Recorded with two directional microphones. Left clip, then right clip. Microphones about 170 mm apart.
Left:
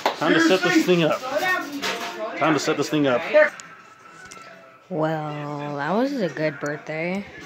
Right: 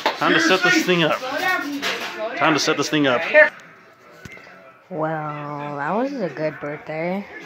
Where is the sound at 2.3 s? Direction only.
10° left (ahead or behind).